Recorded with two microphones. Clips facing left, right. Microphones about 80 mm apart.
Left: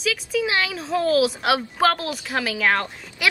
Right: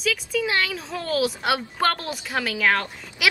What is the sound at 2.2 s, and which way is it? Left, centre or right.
Speech, centre.